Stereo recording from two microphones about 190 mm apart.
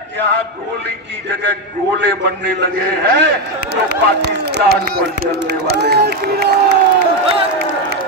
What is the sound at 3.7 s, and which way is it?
Speech, 60° right (ahead or behind).